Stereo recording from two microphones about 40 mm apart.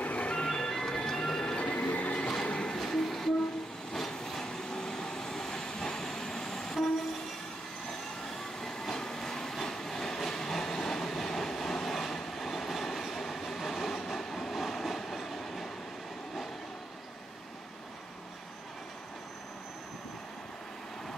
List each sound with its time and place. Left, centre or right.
0.0 s music: left
0.4 s music: centre
1.4 s train: left
1.8 s music: left
2.4 s train: left
2.7 s train: centre
4.6 s vehicle: centre
8.4 s train: centre